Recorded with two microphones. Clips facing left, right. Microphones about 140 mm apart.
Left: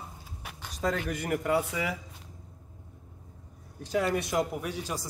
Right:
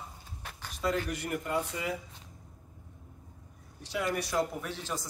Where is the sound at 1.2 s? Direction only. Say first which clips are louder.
Left 8 dB; 75° left (ahead or behind).